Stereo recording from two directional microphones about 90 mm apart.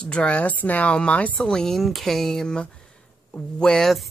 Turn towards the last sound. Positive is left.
turn(degrees=5)  # may be behind; listen again after turning